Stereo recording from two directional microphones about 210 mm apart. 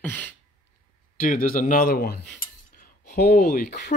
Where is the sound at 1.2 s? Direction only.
40° left (ahead or behind).